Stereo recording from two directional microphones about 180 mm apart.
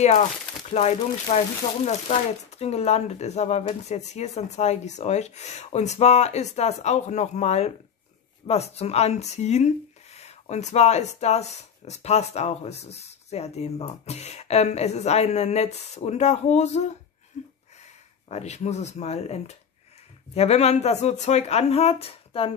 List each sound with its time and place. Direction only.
0.0 s speech: 40° left (ahead or behind)
17.3 s a sound: 40° left (ahead or behind)
18.3 s speech: 40° left (ahead or behind)